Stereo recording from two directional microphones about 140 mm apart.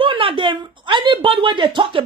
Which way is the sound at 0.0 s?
40° right (ahead or behind).